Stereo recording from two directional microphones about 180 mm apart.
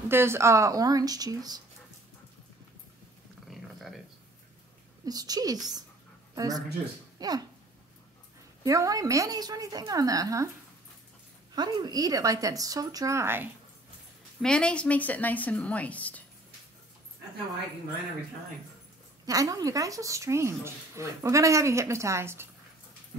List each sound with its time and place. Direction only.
0.1 s a woman's voice: 15° right (ahead or behind)
3.4 s dog: centre (ahead or behind)
5.0 s a woman's voice: 20° right (ahead or behind)
8.6 s a woman's voice: 20° right (ahead or behind)
11.5 s a woman's voice: 25° right (ahead or behind)
14.4 s a woman's voice: 5° left (ahead or behind)
19.2 s speech: 20° right (ahead or behind)